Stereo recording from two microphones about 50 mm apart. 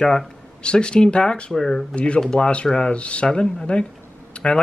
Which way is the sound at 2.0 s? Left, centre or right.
Left.